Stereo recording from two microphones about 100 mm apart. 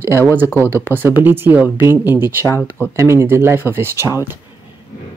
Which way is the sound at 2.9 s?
30° right (ahead or behind).